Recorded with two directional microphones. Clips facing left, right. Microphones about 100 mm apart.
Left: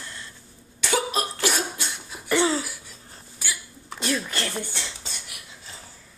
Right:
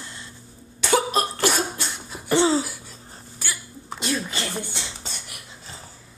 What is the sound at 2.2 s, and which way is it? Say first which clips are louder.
Throat clearing: right 3 dB; 25° right (ahead or behind).